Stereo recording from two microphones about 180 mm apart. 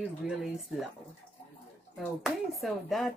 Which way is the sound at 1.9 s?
Centre (ahead or behind).